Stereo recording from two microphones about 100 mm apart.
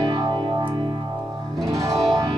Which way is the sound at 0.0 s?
50° right (ahead or behind).